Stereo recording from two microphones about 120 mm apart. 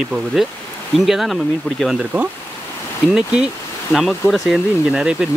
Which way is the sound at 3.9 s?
10° left (ahead or behind).